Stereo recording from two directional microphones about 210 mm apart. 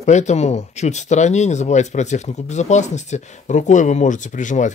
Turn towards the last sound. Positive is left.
turn(degrees=35)  # may be behind; listen again after turning